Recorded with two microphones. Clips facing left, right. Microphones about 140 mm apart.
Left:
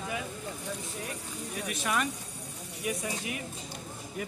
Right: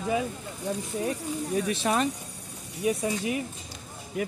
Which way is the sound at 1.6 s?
30° right (ahead or behind).